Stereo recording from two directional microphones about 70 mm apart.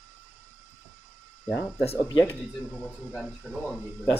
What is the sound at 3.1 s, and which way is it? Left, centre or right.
Speech, centre.